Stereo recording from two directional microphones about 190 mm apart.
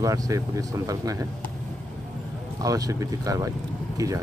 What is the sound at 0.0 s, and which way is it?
Speech, 20° right (ahead or behind).